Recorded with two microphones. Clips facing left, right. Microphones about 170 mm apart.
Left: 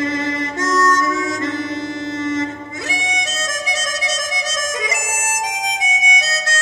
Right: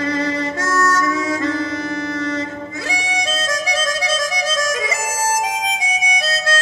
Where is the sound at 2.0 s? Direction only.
20° left (ahead or behind).